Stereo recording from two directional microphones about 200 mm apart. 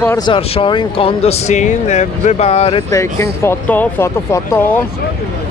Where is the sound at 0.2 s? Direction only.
25° left (ahead or behind).